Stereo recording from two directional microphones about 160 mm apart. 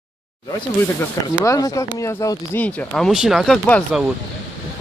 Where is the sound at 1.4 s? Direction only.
20° left (ahead or behind); by 3.8 s 5° left (ahead or behind).